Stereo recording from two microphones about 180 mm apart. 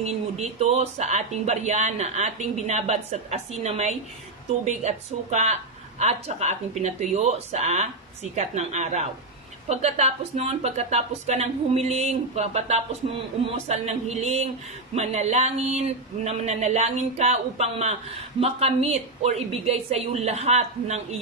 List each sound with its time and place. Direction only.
0.0 s a woman's voice: 40° right (ahead or behind)